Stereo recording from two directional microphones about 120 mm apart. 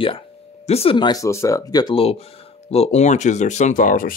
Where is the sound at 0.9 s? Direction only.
40° left (ahead or behind).